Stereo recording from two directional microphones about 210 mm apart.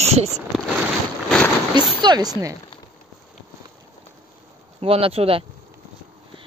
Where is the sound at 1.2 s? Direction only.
5° left (ahead or behind).